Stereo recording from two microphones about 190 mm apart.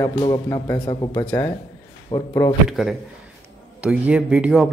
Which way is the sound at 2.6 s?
Centre (ahead or behind).